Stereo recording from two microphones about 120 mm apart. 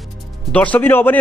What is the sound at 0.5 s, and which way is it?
Speech, 15° left (ahead or behind).